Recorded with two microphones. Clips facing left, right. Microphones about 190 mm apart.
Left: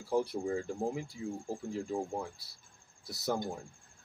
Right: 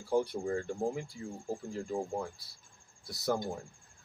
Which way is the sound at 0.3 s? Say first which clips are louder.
Even; 5° left (ahead or behind).